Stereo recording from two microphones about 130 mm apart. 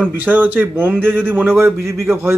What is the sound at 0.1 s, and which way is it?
A man's voice, 15° right (ahead or behind).